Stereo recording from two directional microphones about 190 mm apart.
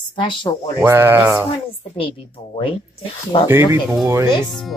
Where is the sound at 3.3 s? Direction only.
30° left (ahead or behind).